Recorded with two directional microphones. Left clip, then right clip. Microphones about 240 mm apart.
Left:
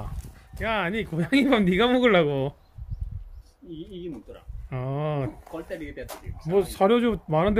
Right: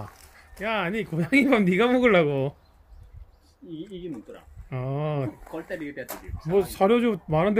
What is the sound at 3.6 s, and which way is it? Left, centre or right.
Speech, right.